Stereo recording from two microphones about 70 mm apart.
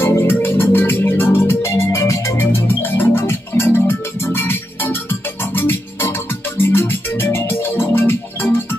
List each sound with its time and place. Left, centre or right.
0.0 s music: left
2.3 s music: left